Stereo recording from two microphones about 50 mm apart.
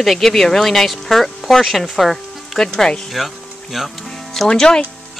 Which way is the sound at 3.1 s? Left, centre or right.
Centre.